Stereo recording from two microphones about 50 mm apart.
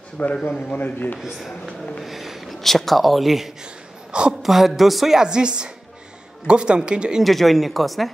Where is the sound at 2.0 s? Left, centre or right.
Centre.